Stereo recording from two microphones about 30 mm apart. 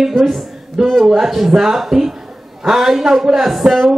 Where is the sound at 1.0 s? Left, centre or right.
Centre.